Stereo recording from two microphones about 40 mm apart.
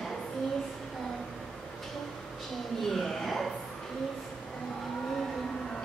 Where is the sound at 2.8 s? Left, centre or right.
Centre.